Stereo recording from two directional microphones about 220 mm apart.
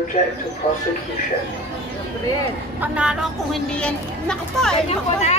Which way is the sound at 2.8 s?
5° right (ahead or behind).